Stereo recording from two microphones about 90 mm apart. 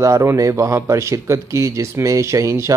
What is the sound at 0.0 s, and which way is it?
Speech, 35° right (ahead or behind).